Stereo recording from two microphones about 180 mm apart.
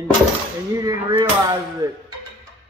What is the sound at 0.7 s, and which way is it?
A man's voice, 20° right (ahead or behind).